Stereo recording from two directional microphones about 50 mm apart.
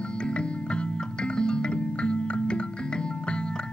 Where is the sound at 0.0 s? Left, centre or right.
Centre.